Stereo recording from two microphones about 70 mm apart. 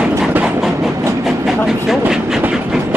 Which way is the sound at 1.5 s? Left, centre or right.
Centre.